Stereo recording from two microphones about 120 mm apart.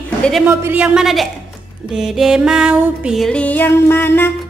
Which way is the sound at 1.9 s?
5° right (ahead or behind).